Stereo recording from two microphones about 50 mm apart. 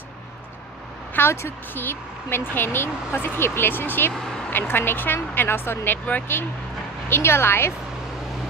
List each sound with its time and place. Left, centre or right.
1.2 s speech: left
4.1 s a sound: centre
4.5 s speech: left
7.1 s speech: left